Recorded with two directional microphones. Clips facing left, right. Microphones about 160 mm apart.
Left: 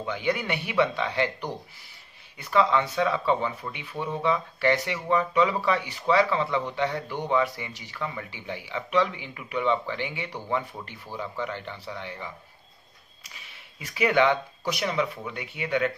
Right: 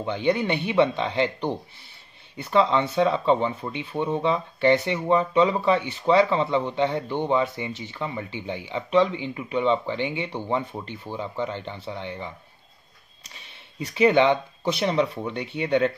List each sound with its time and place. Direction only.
0.0 s speech: 25° right (ahead or behind)
13.3 s speech: 30° right (ahead or behind)